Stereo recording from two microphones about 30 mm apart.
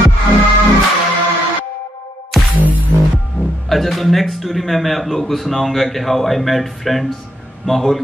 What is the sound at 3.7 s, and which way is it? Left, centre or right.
Speech, centre.